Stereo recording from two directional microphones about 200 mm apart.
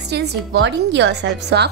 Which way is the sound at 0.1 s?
55° right (ahead or behind).